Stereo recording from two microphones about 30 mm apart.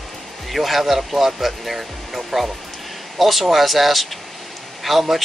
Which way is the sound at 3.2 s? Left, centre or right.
Centre.